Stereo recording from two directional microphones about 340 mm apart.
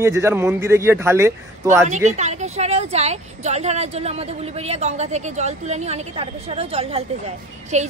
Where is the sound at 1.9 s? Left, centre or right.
Right.